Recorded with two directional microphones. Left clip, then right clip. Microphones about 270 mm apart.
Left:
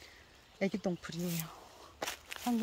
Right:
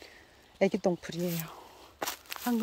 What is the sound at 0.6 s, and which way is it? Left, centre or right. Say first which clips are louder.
Speech: right 8 dB; centre.